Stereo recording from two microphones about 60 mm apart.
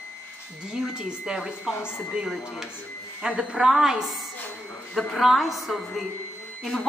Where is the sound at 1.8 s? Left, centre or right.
Left.